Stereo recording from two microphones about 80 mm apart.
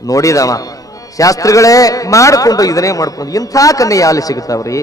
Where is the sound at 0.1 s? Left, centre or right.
Left.